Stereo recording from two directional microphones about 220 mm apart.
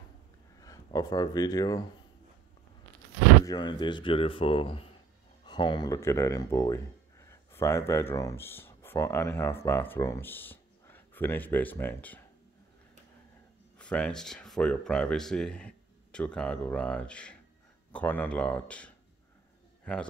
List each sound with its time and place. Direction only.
0.6 s speech: 15° left (ahead or behind)
3.4 s speech: 20° left (ahead or behind)
13.7 s speech: 5° left (ahead or behind)